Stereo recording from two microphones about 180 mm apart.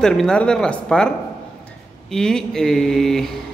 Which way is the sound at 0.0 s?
5° left (ahead or behind).